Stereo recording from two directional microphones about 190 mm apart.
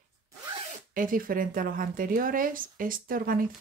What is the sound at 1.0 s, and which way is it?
Speech, 45° right (ahead or behind).